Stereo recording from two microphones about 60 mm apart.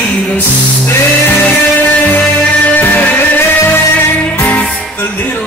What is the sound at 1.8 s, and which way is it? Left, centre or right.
Music, left.